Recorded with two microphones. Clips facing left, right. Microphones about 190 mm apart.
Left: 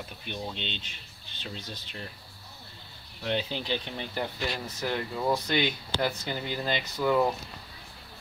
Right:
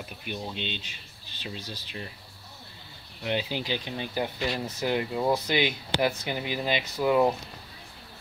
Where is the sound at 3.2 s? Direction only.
10° right (ahead or behind).